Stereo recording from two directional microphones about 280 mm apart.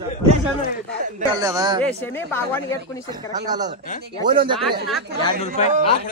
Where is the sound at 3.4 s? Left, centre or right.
Centre.